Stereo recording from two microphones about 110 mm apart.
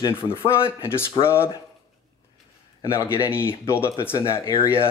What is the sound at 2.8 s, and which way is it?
Speech, 25° left (ahead or behind).